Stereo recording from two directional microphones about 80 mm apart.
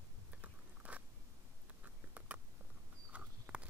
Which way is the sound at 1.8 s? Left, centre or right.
Centre.